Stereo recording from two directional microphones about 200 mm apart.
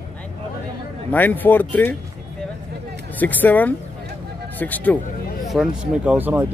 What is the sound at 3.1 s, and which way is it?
A man's voice, 10° left (ahead or behind).